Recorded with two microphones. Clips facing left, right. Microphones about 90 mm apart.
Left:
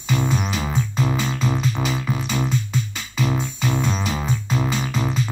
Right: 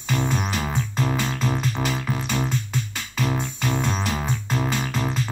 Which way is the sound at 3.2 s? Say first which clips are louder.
Left 2 dB; 45° right (ahead or behind).